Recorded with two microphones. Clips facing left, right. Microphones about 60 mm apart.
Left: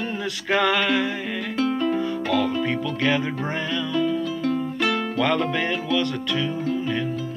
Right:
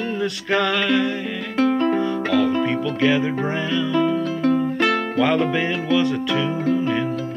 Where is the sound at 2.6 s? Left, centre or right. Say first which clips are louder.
Right 4 dB; centre.